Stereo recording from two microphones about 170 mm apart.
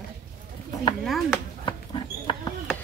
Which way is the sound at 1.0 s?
Centre (ahead or behind).